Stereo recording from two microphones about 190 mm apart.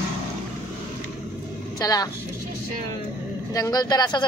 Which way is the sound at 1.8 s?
20° left (ahead or behind).